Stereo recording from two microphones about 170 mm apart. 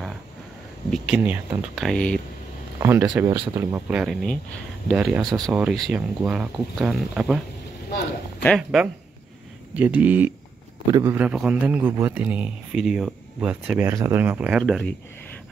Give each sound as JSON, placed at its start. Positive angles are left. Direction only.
{"t": 0.8, "sound": "speech", "side_deg": 0}
{"t": 1.1, "sound": "a man's voice", "side_deg": -10}
{"t": 1.6, "sound": "speech", "side_deg": 0}
{"t": 2.8, "sound": "a man's voice", "side_deg": -15}
{"t": 3.9, "sound": "speech", "side_deg": -5}
{"t": 4.9, "sound": "speech", "side_deg": -5}
{"t": 9.8, "sound": "a man's voice", "side_deg": -10}
{"t": 10.9, "sound": "speech", "side_deg": -20}
{"t": 11.1, "sound": "a man's voice", "side_deg": -5}
{"t": 14.6, "sound": "speech", "side_deg": 5}